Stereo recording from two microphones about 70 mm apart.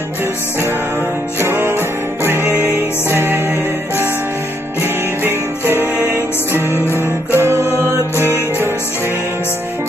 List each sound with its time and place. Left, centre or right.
1.4 s music: right
5.2 s music: right
6.7 s music: left
7.3 s music: right